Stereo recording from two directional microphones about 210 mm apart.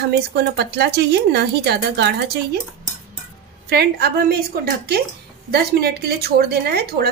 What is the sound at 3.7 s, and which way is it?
Speech, 50° right (ahead or behind).